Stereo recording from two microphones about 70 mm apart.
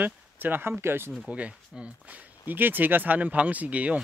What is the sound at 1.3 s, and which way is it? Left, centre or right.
Speech, centre.